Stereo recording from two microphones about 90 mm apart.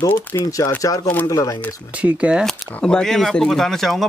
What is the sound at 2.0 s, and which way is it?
Speech, 15° right (ahead or behind).